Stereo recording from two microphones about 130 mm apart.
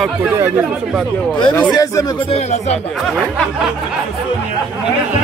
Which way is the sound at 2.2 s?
55° left (ahead or behind).